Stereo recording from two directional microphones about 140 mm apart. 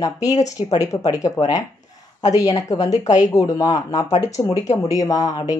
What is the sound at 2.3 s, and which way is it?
Speech, 25° left (ahead or behind).